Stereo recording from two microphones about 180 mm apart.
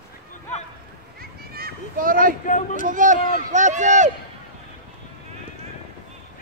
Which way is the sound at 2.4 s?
45° left (ahead or behind).